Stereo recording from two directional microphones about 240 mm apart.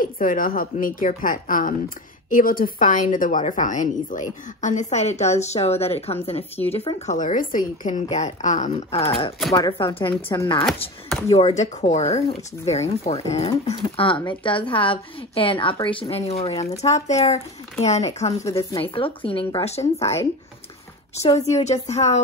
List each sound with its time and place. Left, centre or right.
0.0 s a woman's voice: left
9.5 s speech: centre
11.3 s speech: left
21.2 s speech: left